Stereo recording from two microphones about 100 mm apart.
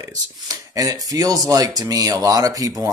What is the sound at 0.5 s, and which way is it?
Speech, 35° right (ahead or behind).